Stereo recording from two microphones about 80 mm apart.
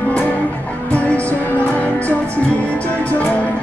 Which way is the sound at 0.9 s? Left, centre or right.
Centre.